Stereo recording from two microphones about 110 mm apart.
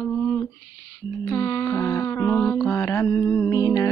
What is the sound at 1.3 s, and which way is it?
Music, 25° left (ahead or behind).